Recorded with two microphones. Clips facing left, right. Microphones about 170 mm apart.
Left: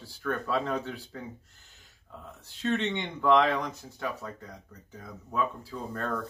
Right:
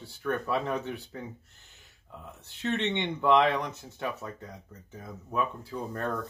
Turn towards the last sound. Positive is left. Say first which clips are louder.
# right 1 dB
turn(degrees=-20)  # may be behind; listen again after turning